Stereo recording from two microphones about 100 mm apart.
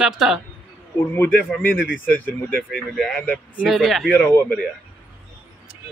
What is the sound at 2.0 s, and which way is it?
Speech, 15° left (ahead or behind).